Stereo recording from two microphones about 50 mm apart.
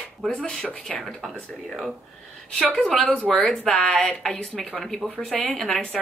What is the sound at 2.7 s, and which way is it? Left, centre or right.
A woman's voice, centre.